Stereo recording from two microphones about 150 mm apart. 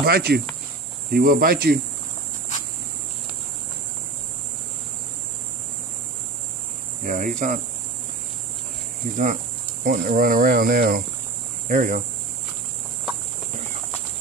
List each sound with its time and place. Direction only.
0.0 s speech: 90° right
1.1 s speech: 75° right (ahead or behind)
7.1 s speech: 60° right (ahead or behind)
9.1 s speech: 60° right (ahead or behind); by 11.0 s 75° right (ahead or behind)
11.6 s speech: 60° right (ahead or behind)